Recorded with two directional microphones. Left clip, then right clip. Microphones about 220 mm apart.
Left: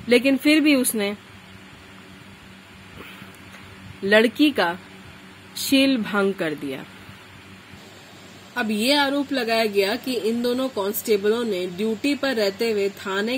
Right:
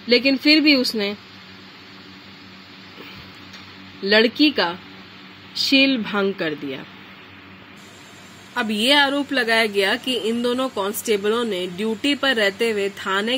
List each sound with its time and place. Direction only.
0.1 s speech: centre (ahead or behind)
4.4 s speech: 5° left (ahead or behind)
8.5 s speech: centre (ahead or behind)